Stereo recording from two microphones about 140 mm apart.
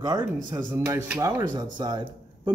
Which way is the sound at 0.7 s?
20° right (ahead or behind).